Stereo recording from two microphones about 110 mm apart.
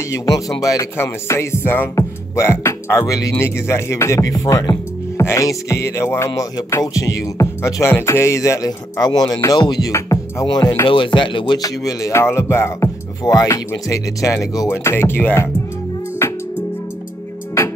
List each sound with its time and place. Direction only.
0.1 s speech: 30° left (ahead or behind)
0.9 s music: 25° left (ahead or behind)
6.8 s speech: 30° left (ahead or behind)
10.4 s speech: 40° left (ahead or behind); by 12.9 s 25° left (ahead or behind)
13.2 s speech: 35° left (ahead or behind)
14.7 s music: 25° left (ahead or behind)